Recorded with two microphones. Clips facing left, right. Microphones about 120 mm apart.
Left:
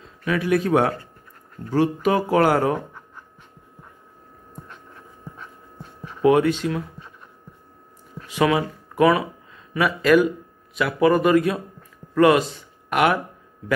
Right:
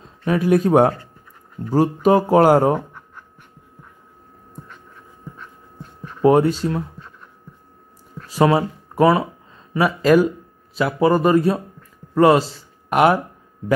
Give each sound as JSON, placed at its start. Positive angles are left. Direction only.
{"t": 0.0, "sound": "speech", "side_deg": -40}
{"t": 2.0, "sound": "speech", "side_deg": -40}
{"t": 6.2, "sound": "speech", "side_deg": -40}
{"t": 8.3, "sound": "speech", "side_deg": -35}